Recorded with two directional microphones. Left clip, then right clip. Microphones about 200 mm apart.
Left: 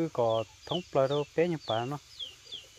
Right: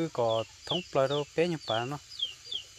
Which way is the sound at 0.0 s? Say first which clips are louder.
Even; 5° left (ahead or behind).